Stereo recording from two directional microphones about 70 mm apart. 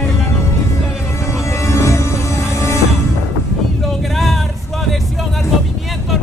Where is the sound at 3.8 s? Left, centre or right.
Centre.